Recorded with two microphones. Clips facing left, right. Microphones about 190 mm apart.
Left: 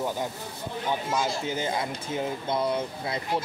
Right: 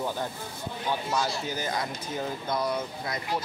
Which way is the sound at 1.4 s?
25° left (ahead or behind).